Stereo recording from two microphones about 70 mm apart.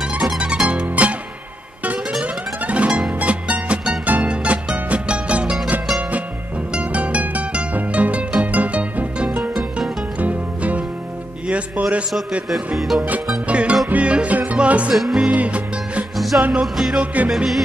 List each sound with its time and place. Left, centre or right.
0.0 s music: centre
2.1 s music: centre
6.7 s music: centre
12.4 s music: centre
13.5 s music: centre
15.0 s music: centre
15.2 s music: centre
16.6 s music: centre
17.0 s music: right